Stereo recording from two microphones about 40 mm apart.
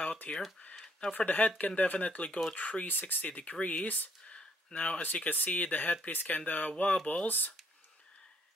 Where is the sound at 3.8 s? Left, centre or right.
Left.